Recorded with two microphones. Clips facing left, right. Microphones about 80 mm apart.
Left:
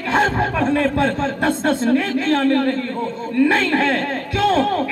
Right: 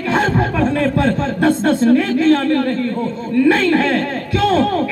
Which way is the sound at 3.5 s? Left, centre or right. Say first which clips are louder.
Right 4 dB; left.